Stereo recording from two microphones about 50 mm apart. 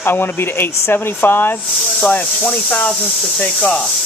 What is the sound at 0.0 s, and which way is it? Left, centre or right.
Speech, left.